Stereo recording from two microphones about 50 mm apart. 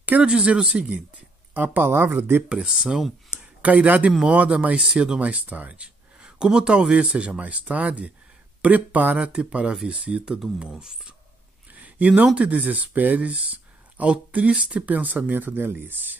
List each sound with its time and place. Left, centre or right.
0.2 s speech: centre
0.9 s speech: right
2.5 s speech: centre
3.3 s speech: right
5.2 s speech: right
10.6 s speech: centre
11.7 s a sound: right
12.4 s speech: right